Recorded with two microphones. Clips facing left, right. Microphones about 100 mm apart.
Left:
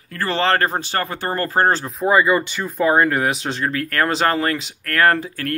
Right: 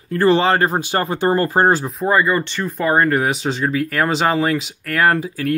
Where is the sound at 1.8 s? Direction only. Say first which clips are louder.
Even; centre (ahead or behind).